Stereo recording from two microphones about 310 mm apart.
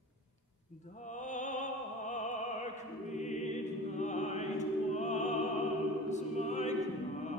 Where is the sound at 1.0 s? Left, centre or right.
Left.